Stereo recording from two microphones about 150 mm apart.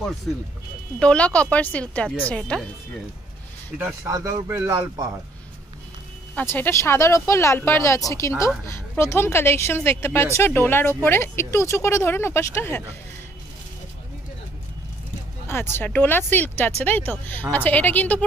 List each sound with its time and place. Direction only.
0.9 s a woman's voice: 5° left (ahead or behind)
4.0 s speech: 20° right (ahead or behind)
6.3 s a woman's voice: 15° left (ahead or behind)
15.7 s a woman's voice: 10° left (ahead or behind)